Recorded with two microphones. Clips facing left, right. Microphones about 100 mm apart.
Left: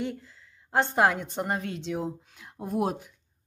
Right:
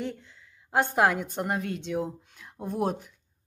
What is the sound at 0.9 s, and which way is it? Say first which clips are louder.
Speech: even; centre (ahead or behind).